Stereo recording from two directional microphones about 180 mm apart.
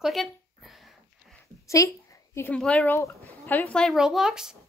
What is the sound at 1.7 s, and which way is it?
Speech, 15° left (ahead or behind).